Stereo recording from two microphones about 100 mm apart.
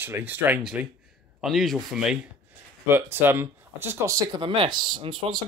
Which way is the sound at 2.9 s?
25° right (ahead or behind).